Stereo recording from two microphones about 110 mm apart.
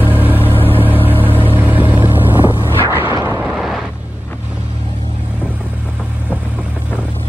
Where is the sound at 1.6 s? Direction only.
15° right (ahead or behind).